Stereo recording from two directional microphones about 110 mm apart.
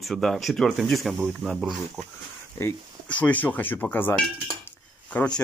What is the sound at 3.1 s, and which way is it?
Speech, 15° left (ahead or behind).